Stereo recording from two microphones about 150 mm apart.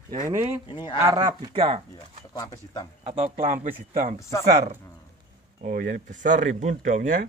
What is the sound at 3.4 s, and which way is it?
Speech, 70° right (ahead or behind).